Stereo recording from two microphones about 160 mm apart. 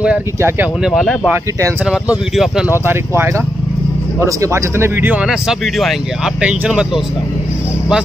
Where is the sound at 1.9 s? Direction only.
5° right (ahead or behind).